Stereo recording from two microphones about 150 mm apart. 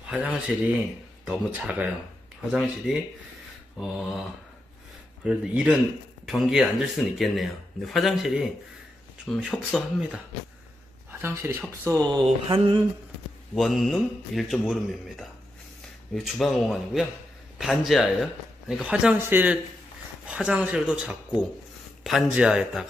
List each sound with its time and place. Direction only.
0.1 s speech: 10° right (ahead or behind)
3.7 s speech: centre (ahead or behind)
5.2 s speech: 5° right (ahead or behind)
11.1 s a sound: 15° right (ahead or behind)
12.1 s mantra: 30° right (ahead or behind)
13.6 s speech: centre (ahead or behind)